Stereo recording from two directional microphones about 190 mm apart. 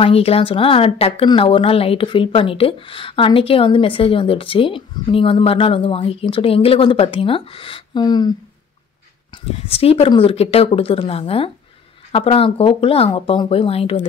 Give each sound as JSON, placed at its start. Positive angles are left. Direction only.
{"t": 0.0, "sound": "speech", "side_deg": 30}